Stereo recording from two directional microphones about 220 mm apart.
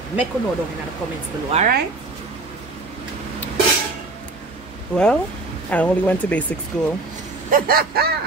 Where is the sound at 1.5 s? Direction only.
30° right (ahead or behind).